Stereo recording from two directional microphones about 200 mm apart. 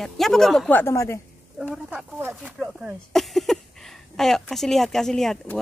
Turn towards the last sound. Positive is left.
turn(degrees=0)  # may be behind; listen again after turning